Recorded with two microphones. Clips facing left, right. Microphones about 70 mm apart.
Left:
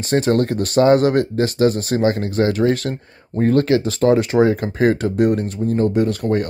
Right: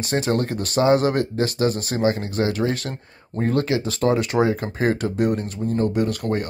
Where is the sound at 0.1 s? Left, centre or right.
Left.